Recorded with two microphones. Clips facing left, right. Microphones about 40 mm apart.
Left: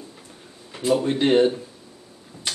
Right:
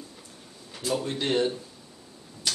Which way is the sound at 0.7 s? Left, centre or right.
Left.